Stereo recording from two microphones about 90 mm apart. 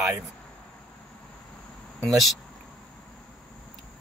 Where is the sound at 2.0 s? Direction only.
Centre (ahead or behind).